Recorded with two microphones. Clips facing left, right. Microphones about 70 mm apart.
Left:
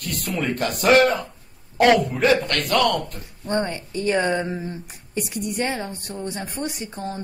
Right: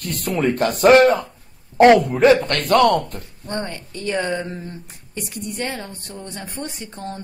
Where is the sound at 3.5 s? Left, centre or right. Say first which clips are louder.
Left 4 dB; centre.